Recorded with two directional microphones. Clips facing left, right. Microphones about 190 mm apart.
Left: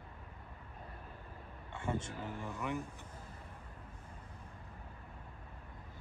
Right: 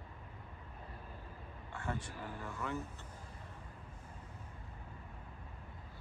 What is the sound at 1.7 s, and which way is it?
Speech, 25° left (ahead or behind).